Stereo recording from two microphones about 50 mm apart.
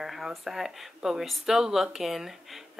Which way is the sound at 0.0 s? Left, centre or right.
Centre.